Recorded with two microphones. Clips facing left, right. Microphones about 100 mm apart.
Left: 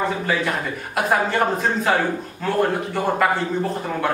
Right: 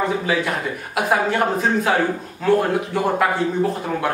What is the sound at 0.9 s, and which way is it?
A man's voice, 5° right (ahead or behind).